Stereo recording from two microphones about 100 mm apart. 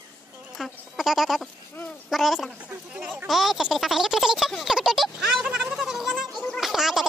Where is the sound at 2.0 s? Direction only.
Centre (ahead or behind).